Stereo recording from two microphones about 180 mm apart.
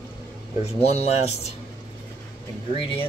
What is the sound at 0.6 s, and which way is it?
Speech, 35° left (ahead or behind).